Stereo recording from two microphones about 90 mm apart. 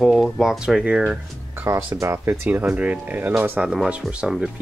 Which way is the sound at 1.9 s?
30° right (ahead or behind).